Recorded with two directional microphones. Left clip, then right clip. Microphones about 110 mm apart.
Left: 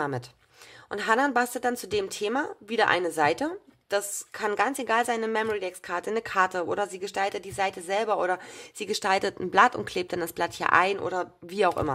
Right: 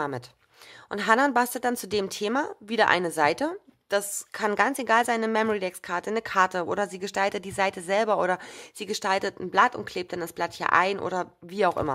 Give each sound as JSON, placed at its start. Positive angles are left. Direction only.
{"t": 0.8, "sound": "a woman's voice", "side_deg": -45}
{"t": 5.9, "sound": "a woman's voice", "side_deg": -35}
{"t": 8.7, "sound": "speech", "side_deg": -30}
{"t": 11.0, "sound": "a woman's voice", "side_deg": -45}
{"t": 11.4, "sound": "speech", "side_deg": -30}